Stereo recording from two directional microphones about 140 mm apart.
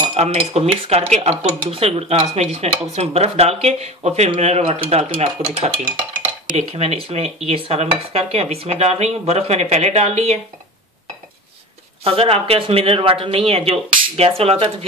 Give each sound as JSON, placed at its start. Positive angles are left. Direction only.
{"t": 0.1, "sound": "speech", "side_deg": -50}
{"t": 12.0, "sound": "speech", "side_deg": -45}